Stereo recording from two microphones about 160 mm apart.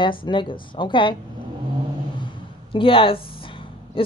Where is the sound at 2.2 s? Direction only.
30° left (ahead or behind).